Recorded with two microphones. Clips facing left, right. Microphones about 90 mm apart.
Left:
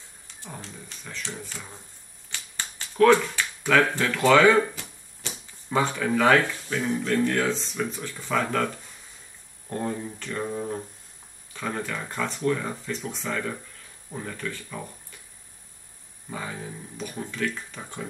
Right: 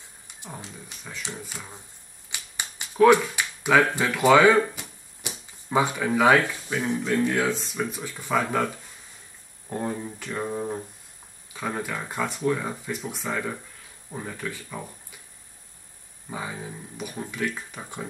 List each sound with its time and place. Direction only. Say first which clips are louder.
0.3 s speech: right 1 dB; 15° right (ahead or behind)
2.3 s a sound: right 1 dB; 15° right (ahead or behind)
5.7 s speech: right 1 dB; 15° right (ahead or behind)
16.3 s speech: right 1 dB; 10° right (ahead or behind)